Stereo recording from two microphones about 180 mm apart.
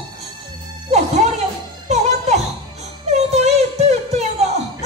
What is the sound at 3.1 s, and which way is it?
Music, 35° right (ahead or behind).